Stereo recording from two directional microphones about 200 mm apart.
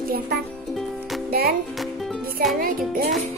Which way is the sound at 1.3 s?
50° right (ahead or behind).